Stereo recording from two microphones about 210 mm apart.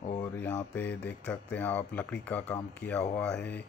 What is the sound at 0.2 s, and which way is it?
Speech, 10° left (ahead or behind).